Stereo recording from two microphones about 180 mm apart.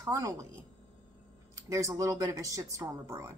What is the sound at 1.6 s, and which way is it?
Speech, 15° right (ahead or behind).